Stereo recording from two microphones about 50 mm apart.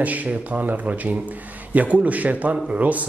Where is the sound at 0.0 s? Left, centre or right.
Right.